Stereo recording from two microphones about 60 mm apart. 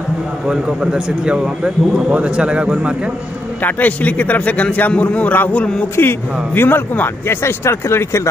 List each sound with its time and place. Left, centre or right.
0.5 s speech: centre
3.6 s a man's voice: left
5.9 s speech: left